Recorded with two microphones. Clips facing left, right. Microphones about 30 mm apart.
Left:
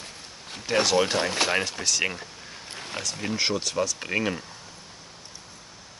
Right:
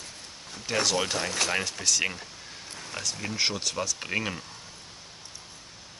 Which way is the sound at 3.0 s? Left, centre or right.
Left.